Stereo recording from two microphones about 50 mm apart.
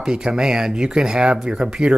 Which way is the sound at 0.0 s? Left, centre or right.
Centre.